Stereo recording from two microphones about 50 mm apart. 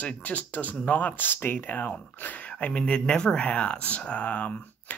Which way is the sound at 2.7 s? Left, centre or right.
Centre.